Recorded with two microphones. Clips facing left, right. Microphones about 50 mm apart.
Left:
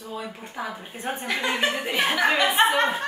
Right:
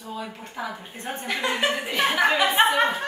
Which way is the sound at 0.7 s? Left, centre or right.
Centre.